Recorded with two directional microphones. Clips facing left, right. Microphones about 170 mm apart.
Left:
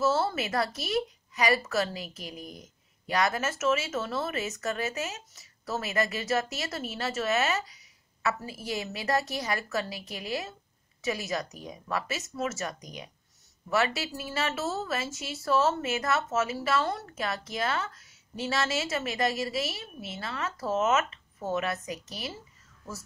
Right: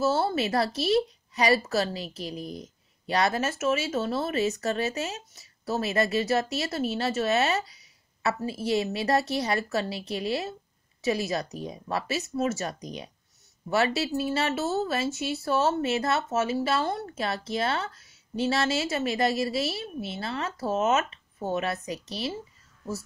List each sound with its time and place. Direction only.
0.0 s a woman's voice: 30° right (ahead or behind)